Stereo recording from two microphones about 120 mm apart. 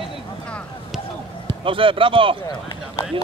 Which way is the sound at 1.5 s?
45° right (ahead or behind).